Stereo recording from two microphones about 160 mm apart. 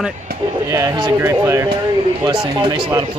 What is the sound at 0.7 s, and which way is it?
Speech, 20° right (ahead or behind).